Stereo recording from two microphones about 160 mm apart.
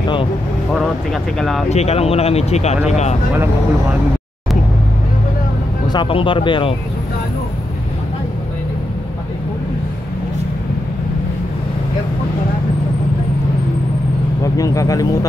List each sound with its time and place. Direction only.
0.7 s speech: centre (ahead or behind)
1.7 s speech: 40° left (ahead or behind)
5.9 s speech: 30° left (ahead or behind)
14.4 s speech: 20° left (ahead or behind)